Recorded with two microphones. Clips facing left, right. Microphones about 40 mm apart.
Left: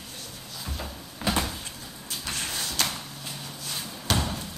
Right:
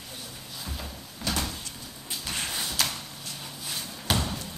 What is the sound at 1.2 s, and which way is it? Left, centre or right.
Door, centre.